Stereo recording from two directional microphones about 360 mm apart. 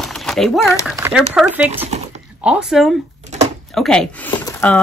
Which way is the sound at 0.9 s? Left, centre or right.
Centre.